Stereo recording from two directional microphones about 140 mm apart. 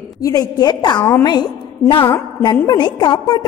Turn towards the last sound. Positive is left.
turn(degrees=30)  # may be behind; listen again after turning